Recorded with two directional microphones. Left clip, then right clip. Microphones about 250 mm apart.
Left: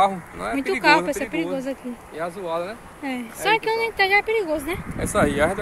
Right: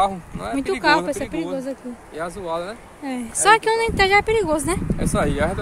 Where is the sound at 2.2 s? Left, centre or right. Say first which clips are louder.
Even; right.